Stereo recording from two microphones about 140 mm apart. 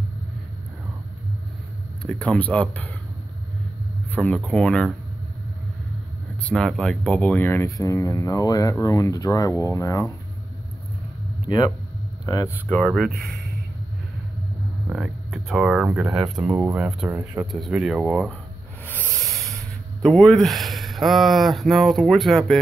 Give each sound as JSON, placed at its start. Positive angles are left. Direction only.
{"t": 2.0, "sound": "speech", "side_deg": 10}
{"t": 4.1, "sound": "speech", "side_deg": 10}
{"t": 6.4, "sound": "speech", "side_deg": 5}
{"t": 12.3, "sound": "speech", "side_deg": 25}
{"t": 12.6, "sound": "speech", "side_deg": 0}
{"t": 14.9, "sound": "speech", "side_deg": -5}
{"t": 17.5, "sound": "speech", "side_deg": 0}
{"t": 19.0, "sound": "rub", "side_deg": -20}
{"t": 20.0, "sound": "speech", "side_deg": 5}